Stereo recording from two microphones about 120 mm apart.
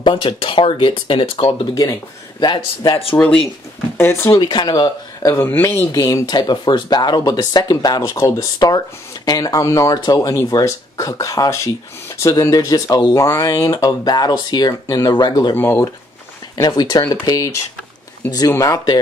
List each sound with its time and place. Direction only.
0.0 s speech: 45° left (ahead or behind)
2.9 s speech: 50° left (ahead or behind)
4.0 s speech: 20° left (ahead or behind)
4.4 s speech: 40° left (ahead or behind)
5.4 s speech: 20° left (ahead or behind)
5.9 s speech: 30° left (ahead or behind)
15.5 s speech: 20° left (ahead or behind)
16.6 s speech: 30° left (ahead or behind)